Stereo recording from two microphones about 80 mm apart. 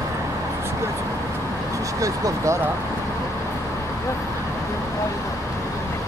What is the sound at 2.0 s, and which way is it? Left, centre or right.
Speech, right.